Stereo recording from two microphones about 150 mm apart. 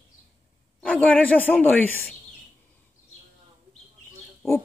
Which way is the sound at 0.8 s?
10° left (ahead or behind).